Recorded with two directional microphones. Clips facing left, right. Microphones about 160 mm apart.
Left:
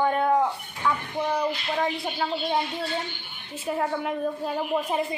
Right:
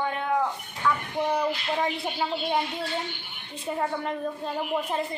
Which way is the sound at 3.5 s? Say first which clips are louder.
Left 2 dB; 5° left (ahead or behind).